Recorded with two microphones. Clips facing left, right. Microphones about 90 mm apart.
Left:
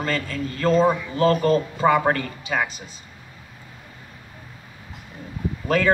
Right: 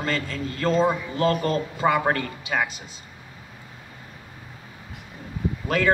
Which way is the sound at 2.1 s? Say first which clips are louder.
Left 2 dB; 25° right (ahead or behind).